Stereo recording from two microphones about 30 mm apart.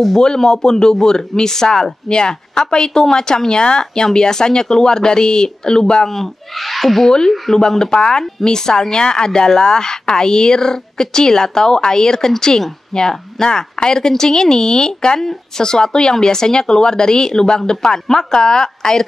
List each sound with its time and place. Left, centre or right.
0.2 s speech: left
6.0 s speech: centre
7.1 s speech: left